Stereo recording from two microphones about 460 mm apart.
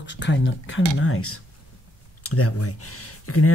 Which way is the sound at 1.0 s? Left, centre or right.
Left.